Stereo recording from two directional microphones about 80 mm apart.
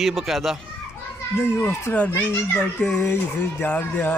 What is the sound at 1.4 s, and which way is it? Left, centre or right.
A child's voice, left.